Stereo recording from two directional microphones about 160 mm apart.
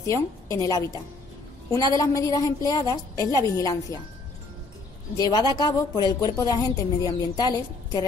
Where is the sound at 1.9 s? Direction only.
20° left (ahead or behind).